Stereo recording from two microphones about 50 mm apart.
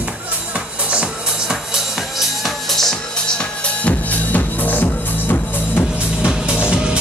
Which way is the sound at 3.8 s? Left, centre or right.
Left.